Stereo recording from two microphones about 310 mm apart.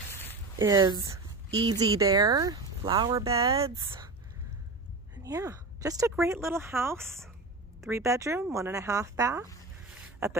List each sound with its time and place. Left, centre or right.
0.6 s speech: centre
5.2 s speech: centre
7.8 s speech: centre